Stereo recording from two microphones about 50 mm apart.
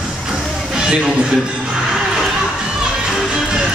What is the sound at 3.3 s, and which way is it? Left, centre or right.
Music, centre.